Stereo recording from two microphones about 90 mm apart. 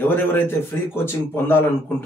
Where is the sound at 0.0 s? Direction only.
25° left (ahead or behind).